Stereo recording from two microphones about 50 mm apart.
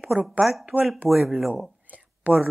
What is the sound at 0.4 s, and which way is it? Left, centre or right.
Speech, centre.